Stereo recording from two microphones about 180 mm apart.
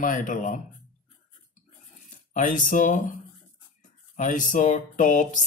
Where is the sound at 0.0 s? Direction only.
45° left (ahead or behind).